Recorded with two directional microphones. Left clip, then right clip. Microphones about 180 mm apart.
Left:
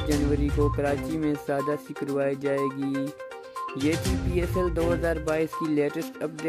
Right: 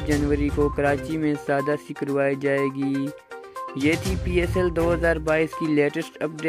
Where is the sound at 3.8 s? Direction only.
10° right (ahead or behind).